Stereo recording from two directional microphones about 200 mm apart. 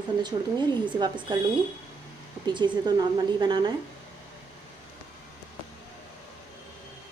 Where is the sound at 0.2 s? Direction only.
20° right (ahead or behind).